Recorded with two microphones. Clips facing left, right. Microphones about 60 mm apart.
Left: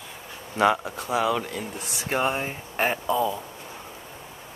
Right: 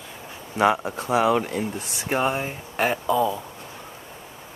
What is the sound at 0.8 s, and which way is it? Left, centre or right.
Speech, right.